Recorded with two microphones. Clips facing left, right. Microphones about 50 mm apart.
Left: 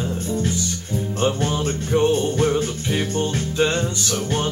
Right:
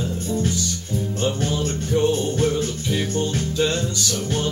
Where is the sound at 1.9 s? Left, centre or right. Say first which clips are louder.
Left 2 dB; left.